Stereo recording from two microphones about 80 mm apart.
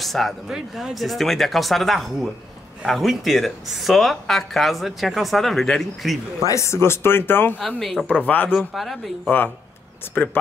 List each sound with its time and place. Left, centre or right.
0.0 s speech: centre
6.4 s speech: left
7.6 s speech: centre
8.1 s speech: left
8.5 s speech: centre
10.2 s speech: centre